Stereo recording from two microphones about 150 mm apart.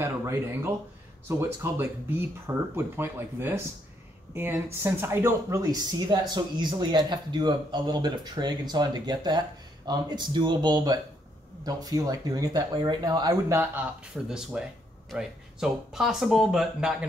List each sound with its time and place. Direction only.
0.0 s speech: 15° right (ahead or behind)
14.1 s speech: 5° right (ahead or behind)